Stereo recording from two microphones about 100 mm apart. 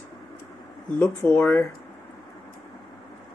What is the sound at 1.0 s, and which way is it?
Speech, 20° left (ahead or behind).